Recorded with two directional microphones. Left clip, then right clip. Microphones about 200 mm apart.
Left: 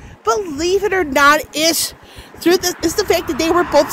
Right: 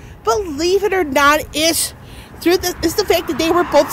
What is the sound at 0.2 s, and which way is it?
A woman's voice, centre (ahead or behind).